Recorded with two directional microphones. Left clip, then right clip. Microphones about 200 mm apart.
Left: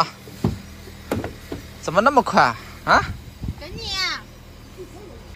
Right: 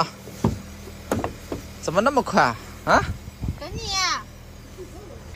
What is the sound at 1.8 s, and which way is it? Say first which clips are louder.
A man's voice: left 4 dB; 10° right (ahead or behind).